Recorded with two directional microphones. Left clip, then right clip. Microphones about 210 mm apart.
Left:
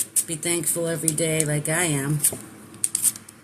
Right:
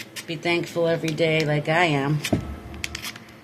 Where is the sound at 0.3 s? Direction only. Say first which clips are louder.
Right 6 dB; 25° left (ahead or behind).